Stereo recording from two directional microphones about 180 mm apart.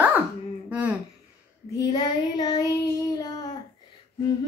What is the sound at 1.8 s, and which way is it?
Speech, 20° left (ahead or behind).